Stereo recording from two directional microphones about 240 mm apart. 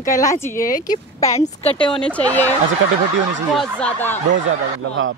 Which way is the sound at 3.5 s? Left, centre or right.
Centre.